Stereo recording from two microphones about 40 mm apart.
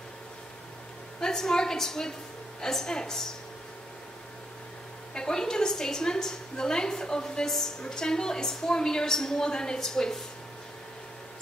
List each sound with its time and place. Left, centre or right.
1.2 s a woman's voice: centre
5.1 s a woman's voice: centre